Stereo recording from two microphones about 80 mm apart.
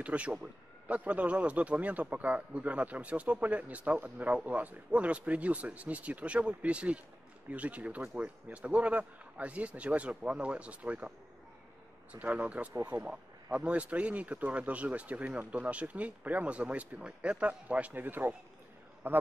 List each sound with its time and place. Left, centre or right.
0.0 s a man's voice: centre